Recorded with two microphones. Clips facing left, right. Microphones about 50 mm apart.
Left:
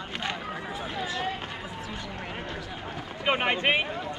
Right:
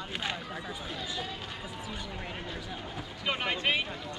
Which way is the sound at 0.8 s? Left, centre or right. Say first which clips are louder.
Left 6 dB; left.